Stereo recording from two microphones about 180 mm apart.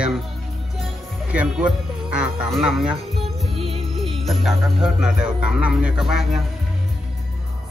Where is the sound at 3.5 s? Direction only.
35° right (ahead or behind).